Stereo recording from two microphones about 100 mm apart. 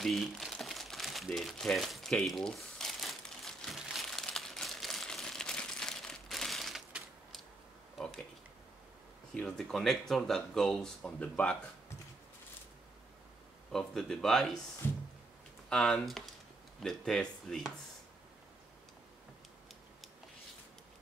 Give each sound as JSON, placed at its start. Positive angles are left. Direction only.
{"t": 0.0, "sound": "crumpling", "side_deg": 0}
{"t": 8.0, "sound": "a sound", "side_deg": 5}
{"t": 9.3, "sound": "speech", "side_deg": 5}
{"t": 13.7, "sound": "speech", "side_deg": 5}
{"t": 14.8, "sound": "speech", "side_deg": 25}
{"t": 15.7, "sound": "speech", "side_deg": 5}